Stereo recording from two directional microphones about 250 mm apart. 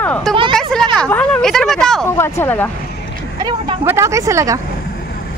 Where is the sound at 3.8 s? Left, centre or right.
Centre.